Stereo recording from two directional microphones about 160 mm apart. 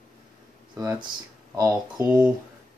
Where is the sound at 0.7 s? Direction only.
25° right (ahead or behind).